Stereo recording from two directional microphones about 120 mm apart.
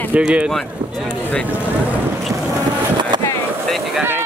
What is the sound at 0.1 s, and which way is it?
Speech, 10° right (ahead or behind).